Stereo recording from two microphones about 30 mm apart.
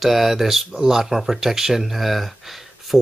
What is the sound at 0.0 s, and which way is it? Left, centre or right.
Speech, centre.